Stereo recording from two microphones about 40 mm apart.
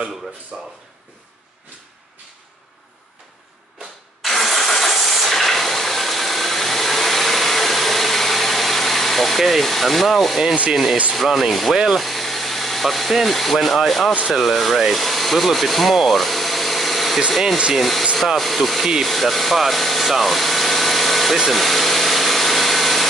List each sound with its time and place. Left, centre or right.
0.5 s rub: centre
4.2 s engine starting: centre
11.1 s speech: centre
11.7 s rub: centre
12.0 s speech: centre
19.0 s rub: centre
21.5 s engine: centre